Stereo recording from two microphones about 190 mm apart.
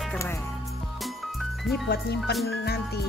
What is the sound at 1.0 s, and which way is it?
Music, centre (ahead or behind).